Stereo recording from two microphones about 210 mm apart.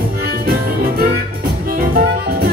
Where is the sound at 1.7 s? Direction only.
45° right (ahead or behind).